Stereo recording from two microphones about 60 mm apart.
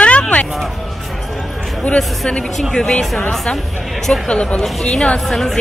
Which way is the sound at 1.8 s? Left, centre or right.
Centre.